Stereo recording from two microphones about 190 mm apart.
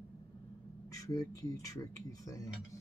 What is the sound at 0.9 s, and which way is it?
Speech, 15° left (ahead or behind).